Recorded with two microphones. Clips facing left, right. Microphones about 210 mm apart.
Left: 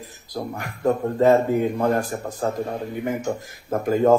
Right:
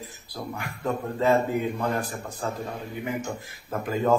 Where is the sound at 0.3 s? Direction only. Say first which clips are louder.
Left 5 dB; 45° left (ahead or behind).